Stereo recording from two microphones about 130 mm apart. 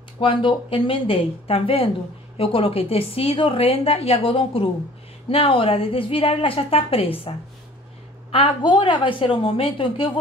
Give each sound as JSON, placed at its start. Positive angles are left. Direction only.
{"t": 0.2, "sound": "a woman's voice", "side_deg": 40}